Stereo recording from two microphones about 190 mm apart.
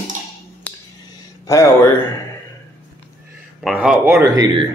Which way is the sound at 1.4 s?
15° left (ahead or behind).